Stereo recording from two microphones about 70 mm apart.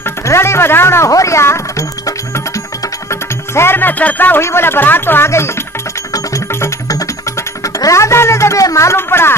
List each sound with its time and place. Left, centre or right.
0.0 s speech: left
3.1 s music: left
4.4 s speech: left
6.9 s music: left